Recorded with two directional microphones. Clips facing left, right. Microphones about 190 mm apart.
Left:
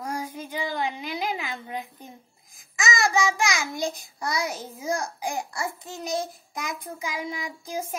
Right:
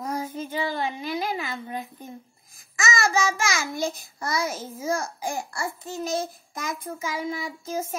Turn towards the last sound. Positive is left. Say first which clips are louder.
# right 2 dB
turn(degrees=15)  # may be behind; listen again after turning